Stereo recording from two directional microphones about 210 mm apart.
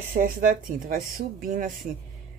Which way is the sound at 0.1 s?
40° right (ahead or behind).